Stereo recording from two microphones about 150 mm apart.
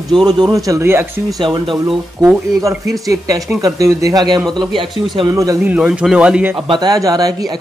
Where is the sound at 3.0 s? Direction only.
25° right (ahead or behind).